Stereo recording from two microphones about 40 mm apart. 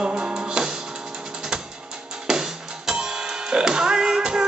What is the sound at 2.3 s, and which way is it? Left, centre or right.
Music, centre.